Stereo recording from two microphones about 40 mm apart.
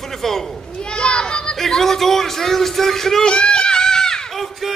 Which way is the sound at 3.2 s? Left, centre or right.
Left.